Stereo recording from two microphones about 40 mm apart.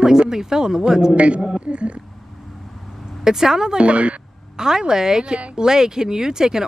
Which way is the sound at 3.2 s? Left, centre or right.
Centre.